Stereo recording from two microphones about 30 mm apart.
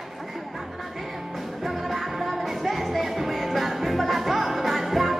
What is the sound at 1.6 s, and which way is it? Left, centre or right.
Music, centre.